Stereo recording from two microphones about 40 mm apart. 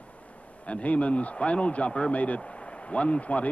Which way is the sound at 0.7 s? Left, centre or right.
Left.